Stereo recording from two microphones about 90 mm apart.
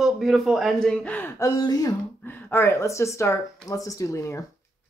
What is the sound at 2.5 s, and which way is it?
Speech, 30° left (ahead or behind).